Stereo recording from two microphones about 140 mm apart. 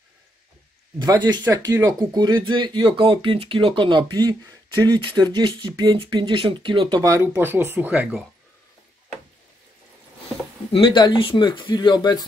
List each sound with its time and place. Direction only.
0.9 s speech: 30° right (ahead or behind)
1.7 s speech: 20° right (ahead or behind); by 7.0 s 35° right (ahead or behind)
7.0 s speech: 20° right (ahead or behind)
10.7 s speech: 35° left (ahead or behind)